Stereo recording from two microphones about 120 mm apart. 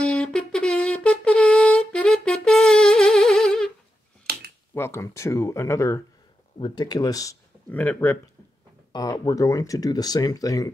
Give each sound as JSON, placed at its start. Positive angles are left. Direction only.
{"t": 0.0, "sound": "wind instrument", "side_deg": 10}
{"t": 4.7, "sound": "speech", "side_deg": 20}
{"t": 6.6, "sound": "speech", "side_deg": 35}
{"t": 7.7, "sound": "speech", "side_deg": 15}
{"t": 8.9, "sound": "speech", "side_deg": 30}